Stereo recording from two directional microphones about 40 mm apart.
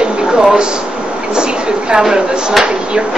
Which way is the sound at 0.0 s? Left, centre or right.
Centre.